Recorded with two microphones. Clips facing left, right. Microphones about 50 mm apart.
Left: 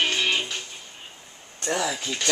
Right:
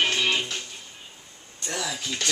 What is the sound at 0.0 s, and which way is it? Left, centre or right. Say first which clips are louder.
Music: even; centre.